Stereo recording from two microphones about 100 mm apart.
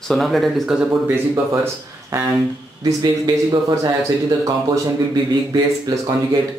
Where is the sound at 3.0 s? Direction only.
50° right (ahead or behind).